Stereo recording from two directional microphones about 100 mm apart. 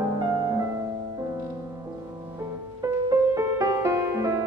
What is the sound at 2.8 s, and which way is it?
Music, 35° right (ahead or behind).